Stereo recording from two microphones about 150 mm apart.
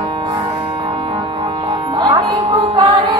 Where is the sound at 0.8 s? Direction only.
35° right (ahead or behind).